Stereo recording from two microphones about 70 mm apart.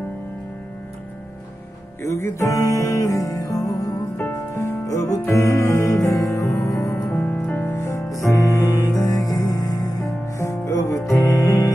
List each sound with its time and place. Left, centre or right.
2.0 s speech: left
4.6 s music: left
7.1 s music: left
7.7 s music: left
10.4 s music: left